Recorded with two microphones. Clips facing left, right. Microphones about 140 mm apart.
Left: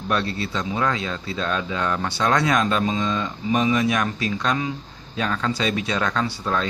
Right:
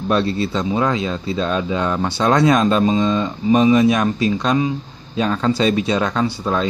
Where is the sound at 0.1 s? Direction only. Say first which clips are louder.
Right 6 dB; 25° right (ahead or behind).